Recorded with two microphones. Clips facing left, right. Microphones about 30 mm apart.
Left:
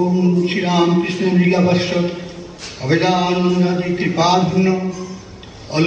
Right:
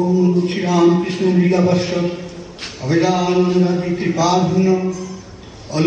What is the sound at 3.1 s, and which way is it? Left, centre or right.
Speech, centre.